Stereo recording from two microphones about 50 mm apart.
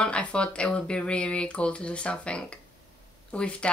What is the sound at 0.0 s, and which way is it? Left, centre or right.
A woman's voice, left.